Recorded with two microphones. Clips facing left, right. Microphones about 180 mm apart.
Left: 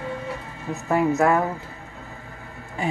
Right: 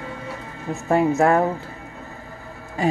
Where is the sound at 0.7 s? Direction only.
30° right (ahead or behind).